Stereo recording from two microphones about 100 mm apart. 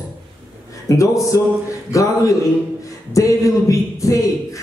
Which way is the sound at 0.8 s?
35° left (ahead or behind).